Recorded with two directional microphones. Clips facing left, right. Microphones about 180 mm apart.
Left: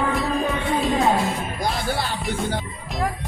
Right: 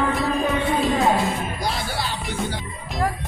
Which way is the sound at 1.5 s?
50° left (ahead or behind).